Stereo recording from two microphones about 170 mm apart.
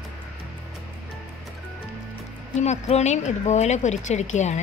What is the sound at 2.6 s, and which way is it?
A woman's voice, 40° left (ahead or behind).